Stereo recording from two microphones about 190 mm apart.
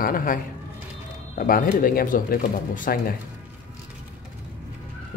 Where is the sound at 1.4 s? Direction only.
45° left (ahead or behind).